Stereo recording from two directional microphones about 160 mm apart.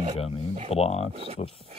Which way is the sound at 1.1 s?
40° right (ahead or behind).